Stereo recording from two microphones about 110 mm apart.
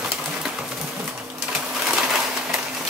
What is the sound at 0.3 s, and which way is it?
Pigeon, 10° right (ahead or behind).